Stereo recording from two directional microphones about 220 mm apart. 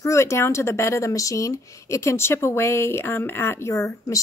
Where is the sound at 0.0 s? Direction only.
15° left (ahead or behind).